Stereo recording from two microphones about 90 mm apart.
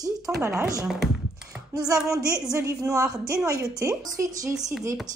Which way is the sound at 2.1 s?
40° right (ahead or behind).